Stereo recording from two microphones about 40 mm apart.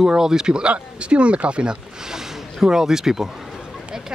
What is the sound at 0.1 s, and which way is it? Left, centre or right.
Speech, centre.